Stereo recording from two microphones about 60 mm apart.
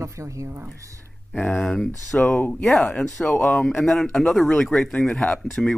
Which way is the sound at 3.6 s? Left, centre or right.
Centre.